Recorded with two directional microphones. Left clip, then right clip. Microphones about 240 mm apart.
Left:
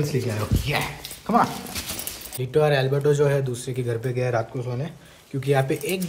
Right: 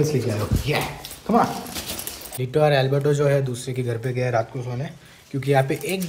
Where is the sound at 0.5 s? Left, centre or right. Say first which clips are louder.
Right 1 dB; centre.